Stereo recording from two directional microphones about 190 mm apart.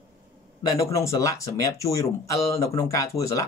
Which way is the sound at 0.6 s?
15° left (ahead or behind).